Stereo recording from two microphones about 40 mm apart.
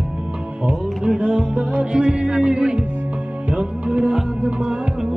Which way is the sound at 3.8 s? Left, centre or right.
Right.